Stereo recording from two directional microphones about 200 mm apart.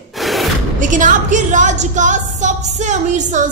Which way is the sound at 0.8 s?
40° right (ahead or behind).